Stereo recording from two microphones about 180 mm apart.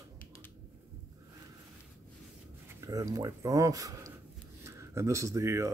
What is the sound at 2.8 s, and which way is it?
Speech, 20° right (ahead or behind).